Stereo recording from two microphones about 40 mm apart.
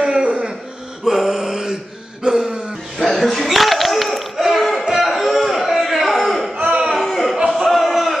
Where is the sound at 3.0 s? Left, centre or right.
Centre.